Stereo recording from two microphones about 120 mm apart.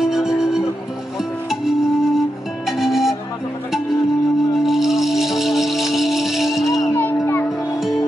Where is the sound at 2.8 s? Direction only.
Centre (ahead or behind).